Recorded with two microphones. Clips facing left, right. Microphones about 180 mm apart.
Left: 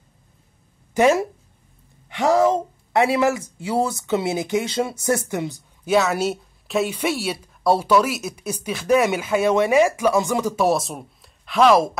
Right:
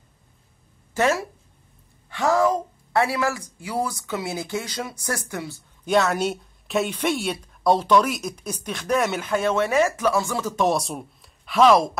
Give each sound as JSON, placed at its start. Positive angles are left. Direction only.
{"t": 0.9, "sound": "speech", "side_deg": 15}
{"t": 5.9, "sound": "speech", "side_deg": 5}